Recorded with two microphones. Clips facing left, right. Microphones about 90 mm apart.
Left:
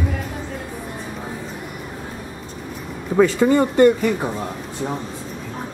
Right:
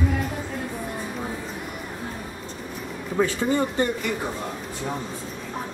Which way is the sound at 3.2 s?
90° left.